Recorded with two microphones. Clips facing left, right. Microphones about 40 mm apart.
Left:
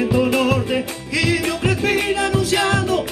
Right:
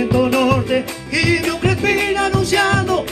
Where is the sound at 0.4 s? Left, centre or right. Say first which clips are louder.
Right 3 dB; centre.